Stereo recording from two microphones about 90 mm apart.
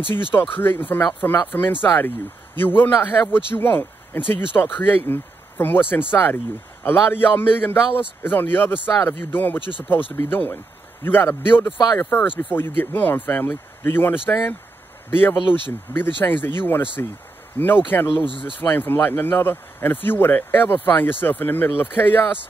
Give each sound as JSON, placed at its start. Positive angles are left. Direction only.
{"t": 0.3, "sound": "speech", "side_deg": 25}
{"t": 18.3, "sound": "speech", "side_deg": 75}
{"t": 18.6, "sound": "speech", "side_deg": 20}